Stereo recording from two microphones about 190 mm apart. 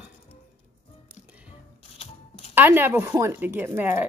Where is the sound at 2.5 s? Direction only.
10° right (ahead or behind).